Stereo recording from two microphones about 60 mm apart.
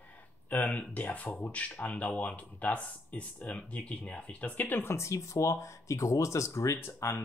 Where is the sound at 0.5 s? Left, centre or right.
Left.